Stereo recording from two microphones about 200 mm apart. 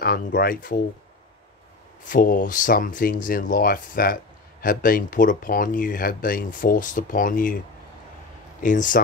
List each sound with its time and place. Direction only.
0.0 s speech: 50° left (ahead or behind)
2.0 s speech: 40° left (ahead or behind)
8.6 s speech: 40° left (ahead or behind)